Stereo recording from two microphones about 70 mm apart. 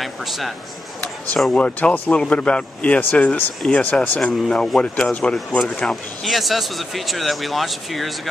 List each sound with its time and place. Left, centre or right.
0.0 s a sound: centre
1.5 s a man's voice: centre
6.2 s speech: centre